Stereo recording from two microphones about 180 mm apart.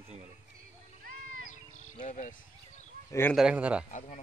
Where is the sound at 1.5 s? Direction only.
45° left (ahead or behind).